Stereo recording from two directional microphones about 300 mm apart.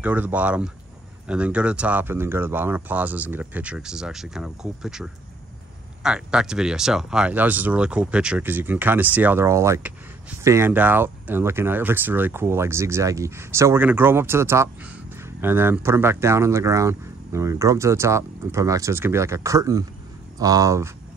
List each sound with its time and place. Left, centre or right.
0.0 s speech: centre